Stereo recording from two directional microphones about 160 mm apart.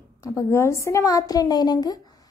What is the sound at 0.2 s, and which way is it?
A woman's voice, 20° left (ahead or behind).